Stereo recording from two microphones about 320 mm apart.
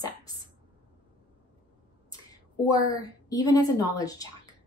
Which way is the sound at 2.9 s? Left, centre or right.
Centre.